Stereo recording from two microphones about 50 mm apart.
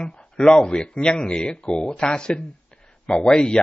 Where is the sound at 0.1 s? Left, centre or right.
Left.